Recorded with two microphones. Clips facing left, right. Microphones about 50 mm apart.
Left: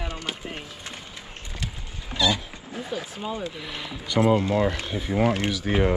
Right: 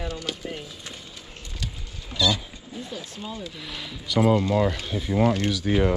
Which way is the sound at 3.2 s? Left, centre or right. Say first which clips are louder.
Left 4 dB; left.